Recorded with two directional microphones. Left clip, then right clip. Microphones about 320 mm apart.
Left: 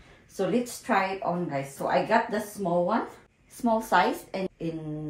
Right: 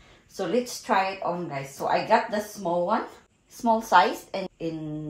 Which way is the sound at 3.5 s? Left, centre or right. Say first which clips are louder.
Right 4 dB; centre.